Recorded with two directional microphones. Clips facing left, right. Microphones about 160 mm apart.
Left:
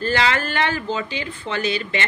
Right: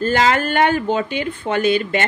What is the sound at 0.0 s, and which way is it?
A woman's voice, 45° right (ahead or behind).